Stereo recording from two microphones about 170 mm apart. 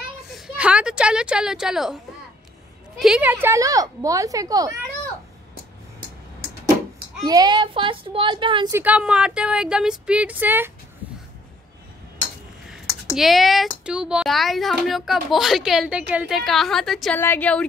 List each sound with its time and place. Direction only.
0.3 s a woman's voice: 5° right (ahead or behind)
3.0 s a woman's voice: 5° right (ahead or behind)
7.2 s a woman's voice: 25° right (ahead or behind)
8.7 s speech: 10° right (ahead or behind)
13.1 s speech: centre (ahead or behind)